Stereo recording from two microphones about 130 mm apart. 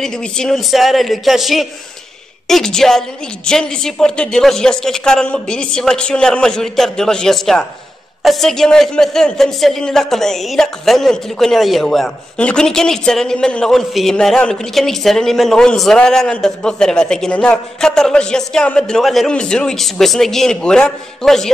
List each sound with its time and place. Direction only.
0.0 s a man's voice: 5° left (ahead or behind)